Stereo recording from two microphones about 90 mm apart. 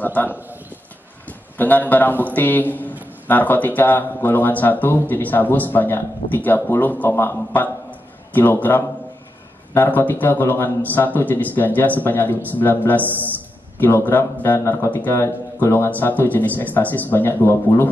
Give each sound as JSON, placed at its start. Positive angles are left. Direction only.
{"t": 0.0, "sound": "speech", "side_deg": 20}
{"t": 1.6, "sound": "speech", "side_deg": 20}